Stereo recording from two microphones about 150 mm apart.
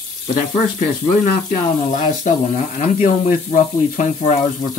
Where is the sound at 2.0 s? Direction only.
50° left (ahead or behind).